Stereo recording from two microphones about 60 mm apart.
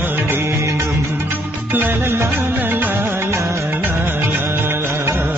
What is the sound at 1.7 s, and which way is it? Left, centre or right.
Music, right.